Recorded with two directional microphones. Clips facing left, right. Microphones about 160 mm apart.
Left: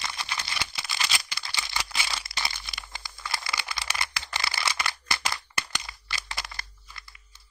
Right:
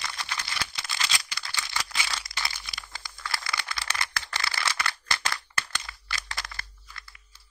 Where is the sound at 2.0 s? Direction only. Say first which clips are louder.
Left 1 dB; 20° left (ahead or behind).